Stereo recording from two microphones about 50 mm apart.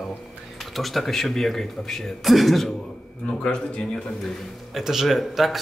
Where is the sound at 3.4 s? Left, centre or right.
Centre.